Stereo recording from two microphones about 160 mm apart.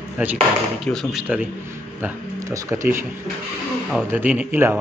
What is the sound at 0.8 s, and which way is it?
Speech, centre (ahead or behind).